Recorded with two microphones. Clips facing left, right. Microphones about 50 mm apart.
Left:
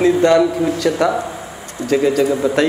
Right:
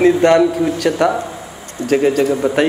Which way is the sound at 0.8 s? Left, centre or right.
Right.